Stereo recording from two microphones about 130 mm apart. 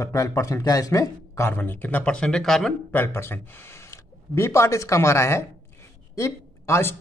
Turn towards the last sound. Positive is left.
turn(degrees=20)  # may be behind; listen again after turning